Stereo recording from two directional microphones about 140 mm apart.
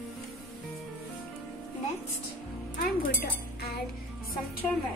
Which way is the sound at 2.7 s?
90° left.